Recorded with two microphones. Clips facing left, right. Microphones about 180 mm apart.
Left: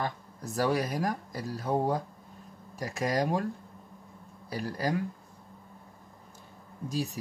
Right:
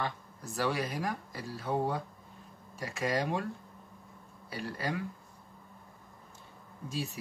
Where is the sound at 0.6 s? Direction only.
40° left (ahead or behind).